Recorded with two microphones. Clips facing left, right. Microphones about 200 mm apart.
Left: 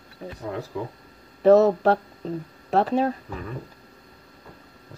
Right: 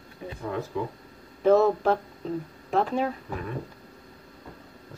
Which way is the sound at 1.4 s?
40° left (ahead or behind).